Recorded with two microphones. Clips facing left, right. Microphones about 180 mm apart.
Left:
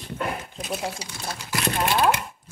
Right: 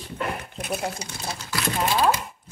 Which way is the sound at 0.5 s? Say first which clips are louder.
Right 1 dB; 55° right (ahead or behind).